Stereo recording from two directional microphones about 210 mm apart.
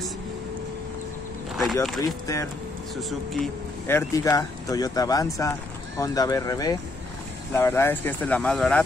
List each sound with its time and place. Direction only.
1.6 s speech: centre (ahead or behind)
2.0 s speech: 15° left (ahead or behind)
3.0 s speech: centre (ahead or behind)
3.8 s speech: 15° left (ahead or behind)